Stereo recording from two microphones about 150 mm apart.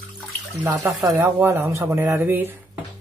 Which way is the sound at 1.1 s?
20° right (ahead or behind).